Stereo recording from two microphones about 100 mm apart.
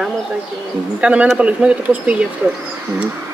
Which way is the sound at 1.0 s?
10° right (ahead or behind).